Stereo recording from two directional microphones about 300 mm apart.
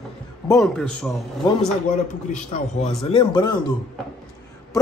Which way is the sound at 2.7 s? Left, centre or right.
Centre.